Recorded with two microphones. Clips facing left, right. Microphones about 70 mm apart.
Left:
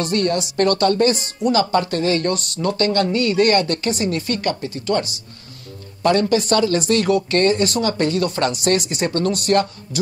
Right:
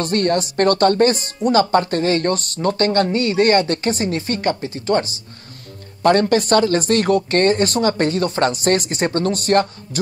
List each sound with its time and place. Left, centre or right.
0.0 s speech: right
6.0 s speech: right